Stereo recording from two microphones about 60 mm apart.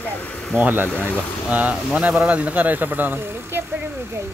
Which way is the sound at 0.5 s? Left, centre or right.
Right.